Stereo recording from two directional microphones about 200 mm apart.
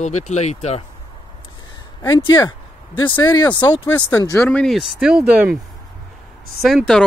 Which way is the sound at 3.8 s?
15° left (ahead or behind).